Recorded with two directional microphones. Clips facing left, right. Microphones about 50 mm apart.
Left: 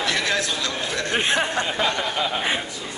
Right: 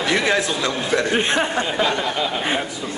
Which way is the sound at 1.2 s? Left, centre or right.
Centre.